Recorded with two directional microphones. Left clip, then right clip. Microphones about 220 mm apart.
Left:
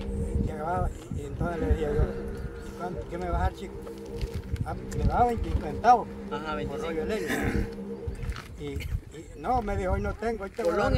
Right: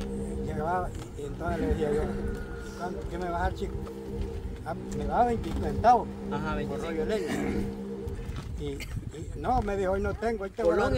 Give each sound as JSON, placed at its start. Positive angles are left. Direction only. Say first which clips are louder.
{"t": 0.6, "sound": "a sound", "louder": "right 1 dB", "side_deg": 5}
{"t": 1.4, "sound": "speech", "louder": "even", "side_deg": 0}
{"t": 4.6, "sound": "speech", "louder": "even", "side_deg": 5}
{"t": 7.2, "sound": "a man's voice", "louder": "left 2 dB", "side_deg": 35}
{"t": 9.4, "sound": "speech", "louder": "even", "side_deg": 0}
{"t": 10.6, "sound": "speech", "louder": "right 1 dB", "side_deg": 15}